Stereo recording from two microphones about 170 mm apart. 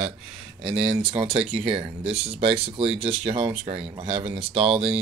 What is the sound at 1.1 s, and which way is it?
Speech, 35° right (ahead or behind).